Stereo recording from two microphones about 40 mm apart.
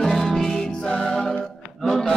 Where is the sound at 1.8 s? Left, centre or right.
Centre.